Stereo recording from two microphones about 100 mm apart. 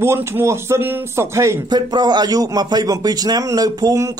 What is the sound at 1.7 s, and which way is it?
A man's voice, 45° right (ahead or behind).